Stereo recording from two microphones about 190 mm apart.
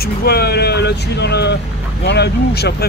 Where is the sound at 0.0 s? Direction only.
55° left (ahead or behind).